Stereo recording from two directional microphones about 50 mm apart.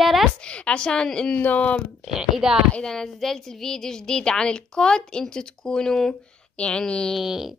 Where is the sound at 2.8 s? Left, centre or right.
Centre.